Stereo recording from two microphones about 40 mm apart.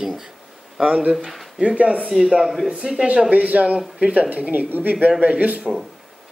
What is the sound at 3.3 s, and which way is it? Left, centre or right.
Speech, right.